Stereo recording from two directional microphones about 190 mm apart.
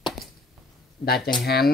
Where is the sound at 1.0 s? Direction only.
55° left (ahead or behind).